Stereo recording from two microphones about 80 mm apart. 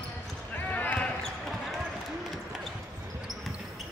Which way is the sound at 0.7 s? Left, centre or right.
Centre.